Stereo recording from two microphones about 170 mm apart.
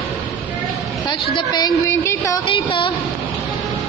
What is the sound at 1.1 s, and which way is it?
Speech, 25° left (ahead or behind).